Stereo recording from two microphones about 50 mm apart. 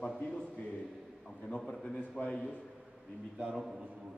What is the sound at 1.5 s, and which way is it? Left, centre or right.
Speech, centre.